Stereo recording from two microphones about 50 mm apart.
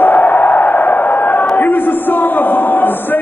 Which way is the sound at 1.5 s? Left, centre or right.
Left.